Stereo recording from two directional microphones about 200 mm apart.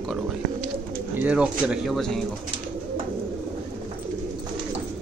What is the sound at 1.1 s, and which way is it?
Speech, 5° right (ahead or behind).